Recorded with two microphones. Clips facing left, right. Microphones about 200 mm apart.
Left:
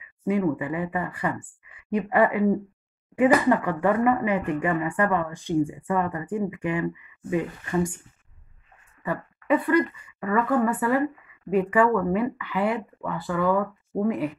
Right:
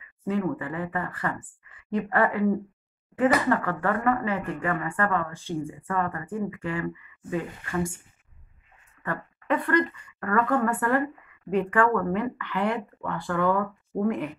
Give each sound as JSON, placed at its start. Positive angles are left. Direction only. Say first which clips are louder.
{"t": 0.0, "sound": "speech", "louder": "left 3 dB", "side_deg": 15}
{"t": 9.0, "sound": "speech", "louder": "left 3 dB", "side_deg": 10}